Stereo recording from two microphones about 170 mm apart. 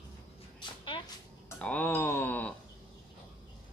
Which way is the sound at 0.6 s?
30° left (ahead or behind).